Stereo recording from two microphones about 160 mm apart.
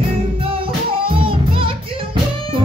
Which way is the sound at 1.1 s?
35° right (ahead or behind).